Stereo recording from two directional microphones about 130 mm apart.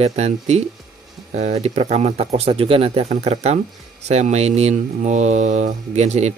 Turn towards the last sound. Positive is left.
turn(degrees=-60)  # may be behind; listen again after turning